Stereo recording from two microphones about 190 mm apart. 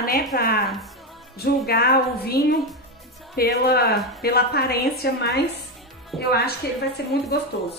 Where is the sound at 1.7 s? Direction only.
55° left (ahead or behind).